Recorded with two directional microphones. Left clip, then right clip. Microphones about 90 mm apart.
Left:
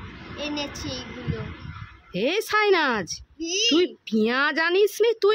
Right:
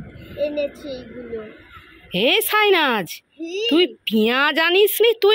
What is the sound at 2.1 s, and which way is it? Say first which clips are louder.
Speech: right 6 dB; 5° right (ahead or behind).